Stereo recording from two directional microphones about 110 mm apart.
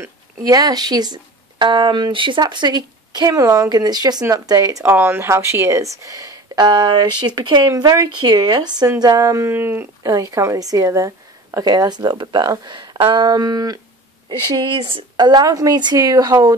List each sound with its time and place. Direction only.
0.4 s speech: 35° right (ahead or behind)
4.9 s speech: 20° right (ahead or behind)
10.0 s speech: 30° right (ahead or behind)
14.6 s speech: 50° right (ahead or behind)